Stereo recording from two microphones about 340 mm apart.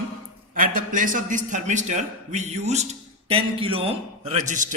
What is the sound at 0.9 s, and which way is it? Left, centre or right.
A man's voice, right.